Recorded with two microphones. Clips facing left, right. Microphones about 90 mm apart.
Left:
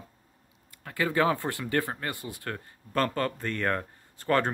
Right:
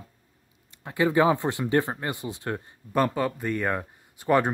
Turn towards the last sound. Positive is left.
turn(degrees=-15)  # may be behind; listen again after turning